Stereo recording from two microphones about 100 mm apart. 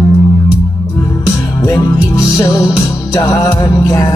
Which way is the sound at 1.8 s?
40° left (ahead or behind).